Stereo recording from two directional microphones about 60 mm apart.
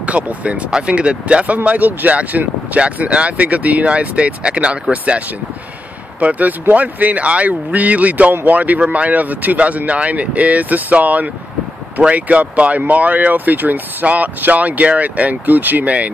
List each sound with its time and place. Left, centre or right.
0.0 s speech: right